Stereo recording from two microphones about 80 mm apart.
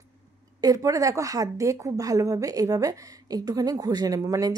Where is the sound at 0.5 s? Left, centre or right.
Right.